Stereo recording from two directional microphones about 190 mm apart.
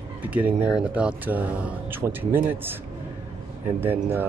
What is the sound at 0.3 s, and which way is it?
Speech, 10° right (ahead or behind).